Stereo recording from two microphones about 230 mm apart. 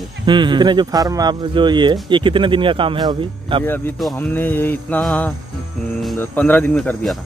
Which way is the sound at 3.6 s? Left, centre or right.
Centre.